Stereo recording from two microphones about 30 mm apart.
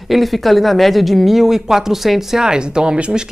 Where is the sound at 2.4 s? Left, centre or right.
Right.